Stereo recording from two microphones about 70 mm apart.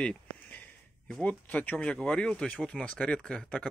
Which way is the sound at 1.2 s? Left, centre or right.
Left.